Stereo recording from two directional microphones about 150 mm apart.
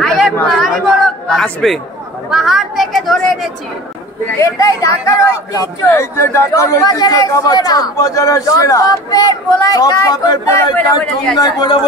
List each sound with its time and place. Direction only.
0.0 s chatter: centre (ahead or behind)
2.3 s a woman's voice: centre (ahead or behind)
4.4 s speech: 20° left (ahead or behind)